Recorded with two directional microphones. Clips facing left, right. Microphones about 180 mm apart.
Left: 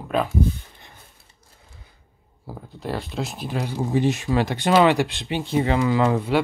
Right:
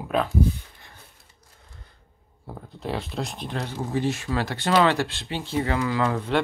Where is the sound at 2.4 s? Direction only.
Centre (ahead or behind); by 6.2 s 20° left (ahead or behind).